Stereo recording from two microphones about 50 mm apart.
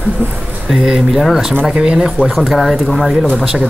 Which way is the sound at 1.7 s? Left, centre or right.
Centre.